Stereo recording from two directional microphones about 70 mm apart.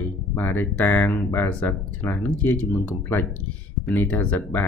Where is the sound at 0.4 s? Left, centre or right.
Left.